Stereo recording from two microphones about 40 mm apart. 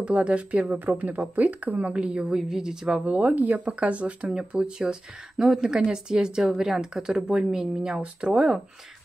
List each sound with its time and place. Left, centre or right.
0.0 s speech: right
2.2 s a woman's voice: centre
3.1 s speech: right
3.6 s a woman's voice: right